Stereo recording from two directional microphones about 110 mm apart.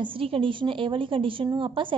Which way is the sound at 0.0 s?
55° right (ahead or behind).